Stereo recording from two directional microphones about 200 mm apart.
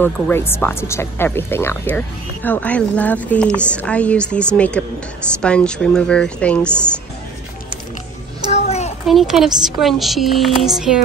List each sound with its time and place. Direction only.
0.0 s speech: 10° left (ahead or behind)
8.5 s a sound: 35° left (ahead or behind)
9.0 s speech: centre (ahead or behind)